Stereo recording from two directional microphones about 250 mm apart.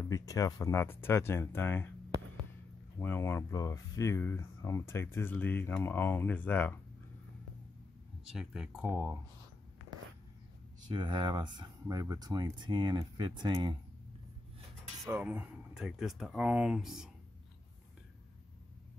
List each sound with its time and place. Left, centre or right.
0.0 s speech: centre
3.0 s speech: centre
8.3 s speech: centre
10.8 s speech: centre
15.0 s speech: centre